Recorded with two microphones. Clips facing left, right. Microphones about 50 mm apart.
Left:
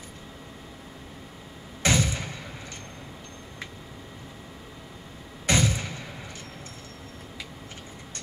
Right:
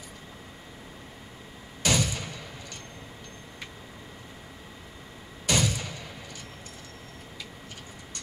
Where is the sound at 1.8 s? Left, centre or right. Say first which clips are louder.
Left 2 dB; left.